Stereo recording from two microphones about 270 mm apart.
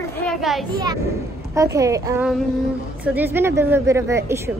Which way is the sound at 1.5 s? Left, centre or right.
Centre.